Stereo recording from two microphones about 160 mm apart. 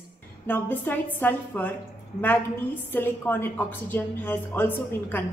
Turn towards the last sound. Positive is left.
turn(degrees=15)  # may be behind; listen again after turning